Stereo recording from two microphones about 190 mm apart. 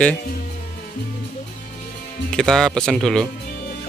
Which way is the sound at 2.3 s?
Centre (ahead or behind).